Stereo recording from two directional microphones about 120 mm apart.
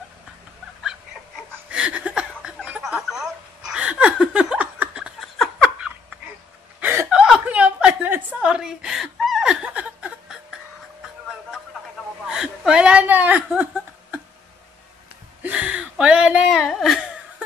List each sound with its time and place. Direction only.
1.7 s chuckle: 10° right (ahead or behind)
2.9 s a sound: 5° right (ahead or behind)
5.4 s laughter: 5° right (ahead or behind)
6.8 s chuckle: 15° right (ahead or behind)
12.3 s whimper: 5° right (ahead or behind)
15.4 s a sound: 10° right (ahead or behind)